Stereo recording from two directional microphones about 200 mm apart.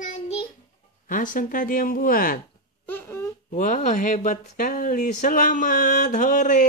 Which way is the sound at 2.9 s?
15° left (ahead or behind).